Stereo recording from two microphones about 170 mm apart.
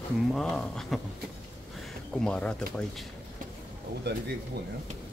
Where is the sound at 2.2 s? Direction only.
5° left (ahead or behind).